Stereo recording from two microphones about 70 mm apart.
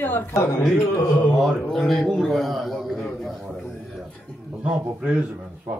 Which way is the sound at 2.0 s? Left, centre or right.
Centre.